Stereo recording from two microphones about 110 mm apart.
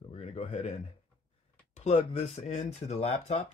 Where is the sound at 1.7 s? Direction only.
80° left.